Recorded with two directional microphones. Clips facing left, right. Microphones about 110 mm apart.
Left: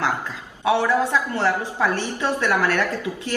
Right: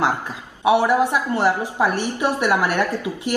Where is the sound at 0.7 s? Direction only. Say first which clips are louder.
Right 3 dB; 15° right (ahead or behind).